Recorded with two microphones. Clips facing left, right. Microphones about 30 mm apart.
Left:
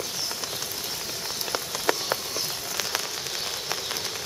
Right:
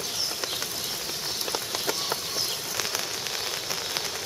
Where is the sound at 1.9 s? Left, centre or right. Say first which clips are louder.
Left 6 dB; left.